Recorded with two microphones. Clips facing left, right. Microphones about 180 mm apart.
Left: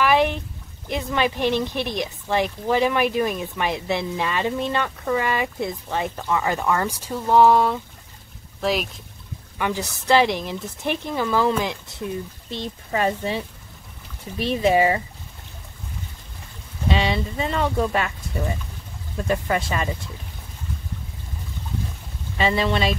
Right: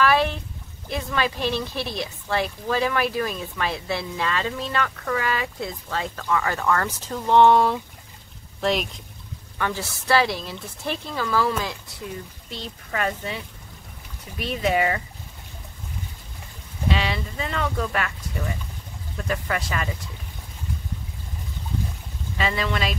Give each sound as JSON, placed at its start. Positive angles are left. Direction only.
{"t": 0.0, "sound": "a sound", "side_deg": 15}
{"t": 0.8, "sound": "speech", "side_deg": 20}
{"t": 9.6, "sound": "speech", "side_deg": 15}
{"t": 14.4, "sound": "speech", "side_deg": 25}
{"t": 16.9, "sound": "speech", "side_deg": 25}
{"t": 22.4, "sound": "speech", "side_deg": 25}